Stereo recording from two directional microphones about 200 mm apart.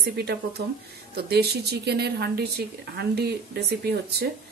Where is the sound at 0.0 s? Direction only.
55° right (ahead or behind).